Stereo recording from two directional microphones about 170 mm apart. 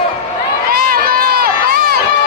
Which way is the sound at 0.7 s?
65° right (ahead or behind).